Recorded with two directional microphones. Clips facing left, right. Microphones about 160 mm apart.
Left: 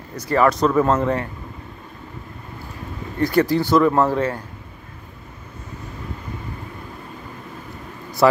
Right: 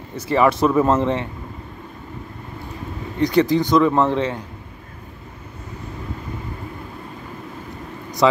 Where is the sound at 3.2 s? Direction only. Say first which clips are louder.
Right 1 dB; 20° right (ahead or behind).